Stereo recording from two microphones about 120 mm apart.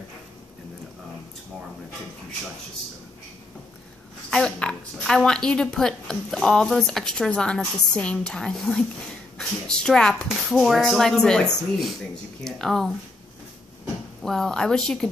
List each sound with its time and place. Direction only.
4.3 s a woman's voice: 5° left (ahead or behind)
14.2 s a woman's voice: 5° left (ahead or behind)